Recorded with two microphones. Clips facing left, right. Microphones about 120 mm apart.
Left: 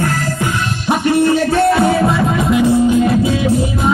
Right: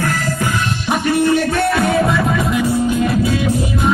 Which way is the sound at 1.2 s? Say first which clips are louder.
Left 2 dB; 30° left (ahead or behind).